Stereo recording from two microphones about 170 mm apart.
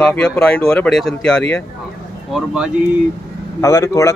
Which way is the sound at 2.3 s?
5° right (ahead or behind).